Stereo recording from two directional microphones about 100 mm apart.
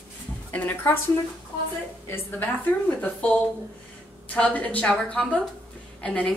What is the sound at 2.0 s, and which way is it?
A woman's voice, 20° left (ahead or behind).